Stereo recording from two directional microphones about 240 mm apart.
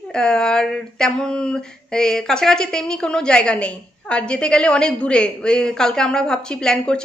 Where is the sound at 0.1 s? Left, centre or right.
Centre.